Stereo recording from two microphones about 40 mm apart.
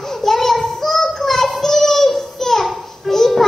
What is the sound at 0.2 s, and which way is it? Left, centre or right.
Child singing, centre.